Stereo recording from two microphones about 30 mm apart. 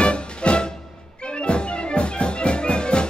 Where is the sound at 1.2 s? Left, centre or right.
Left.